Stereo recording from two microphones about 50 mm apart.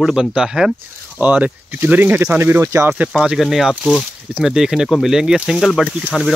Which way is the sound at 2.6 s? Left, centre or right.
Right.